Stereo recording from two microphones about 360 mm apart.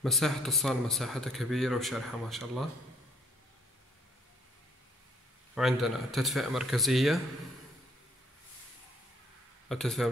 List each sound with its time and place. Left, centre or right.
0.0 s speech: centre
5.5 s speech: centre
9.7 s speech: centre